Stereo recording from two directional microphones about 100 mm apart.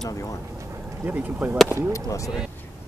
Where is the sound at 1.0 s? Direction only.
15° right (ahead or behind).